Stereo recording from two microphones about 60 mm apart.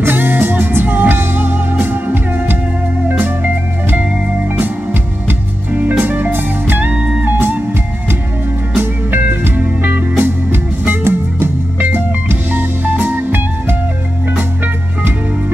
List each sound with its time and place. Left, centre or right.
0.0 s music: right
5.7 s music: right
8.7 s music: right